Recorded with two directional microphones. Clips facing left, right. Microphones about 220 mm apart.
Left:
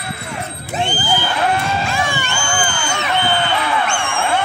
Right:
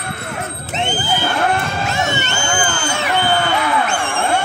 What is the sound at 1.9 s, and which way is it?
Crowd, 25° right (ahead or behind).